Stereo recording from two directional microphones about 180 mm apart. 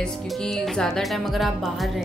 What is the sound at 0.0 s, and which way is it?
Speech, centre (ahead or behind).